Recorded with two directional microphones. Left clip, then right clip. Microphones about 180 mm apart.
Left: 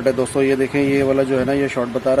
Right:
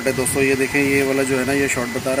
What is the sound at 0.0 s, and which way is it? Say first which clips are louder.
Speech: left 2 dB; 20° left (ahead or behind).